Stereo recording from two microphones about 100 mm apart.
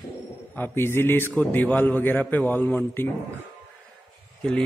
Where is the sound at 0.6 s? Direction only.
25° left (ahead or behind).